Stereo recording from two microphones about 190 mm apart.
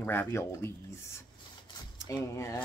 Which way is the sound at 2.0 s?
15° left (ahead or behind).